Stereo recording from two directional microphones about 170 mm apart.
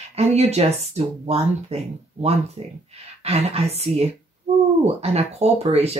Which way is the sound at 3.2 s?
40° right (ahead or behind).